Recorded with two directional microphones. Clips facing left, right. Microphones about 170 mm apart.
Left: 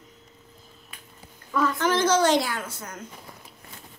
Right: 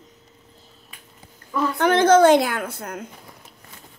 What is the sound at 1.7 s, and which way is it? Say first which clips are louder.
A woman's voice: right 9 dB; 60° right (ahead or behind).